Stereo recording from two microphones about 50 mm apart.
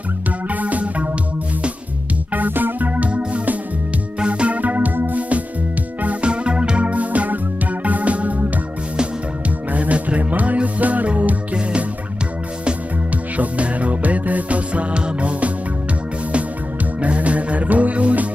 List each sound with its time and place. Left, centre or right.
0.5 s music: right
2.3 s music: right
3.1 s music: right
6.0 s music: right
9.7 s music: right
13.4 s music: right
17.0 s music: right